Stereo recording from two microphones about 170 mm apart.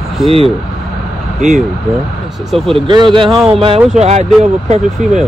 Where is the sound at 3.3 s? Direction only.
Centre (ahead or behind).